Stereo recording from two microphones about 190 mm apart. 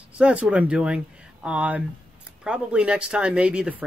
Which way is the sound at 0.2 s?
5° right (ahead or behind).